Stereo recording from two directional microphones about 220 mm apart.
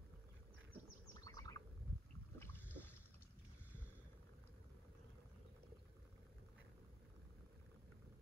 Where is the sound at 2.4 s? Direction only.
10° left (ahead or behind).